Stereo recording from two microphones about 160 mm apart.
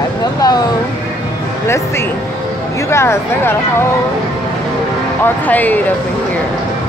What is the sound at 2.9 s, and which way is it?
Speech, 15° left (ahead or behind).